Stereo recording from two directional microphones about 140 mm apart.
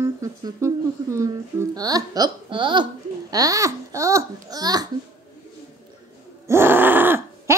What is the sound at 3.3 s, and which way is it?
Babbling, 25° right (ahead or behind).